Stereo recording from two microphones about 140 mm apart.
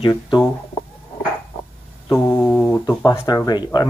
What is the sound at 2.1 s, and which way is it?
Speech, 20° left (ahead or behind).